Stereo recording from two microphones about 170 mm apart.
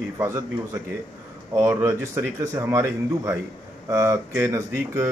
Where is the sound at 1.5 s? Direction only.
15° right (ahead or behind).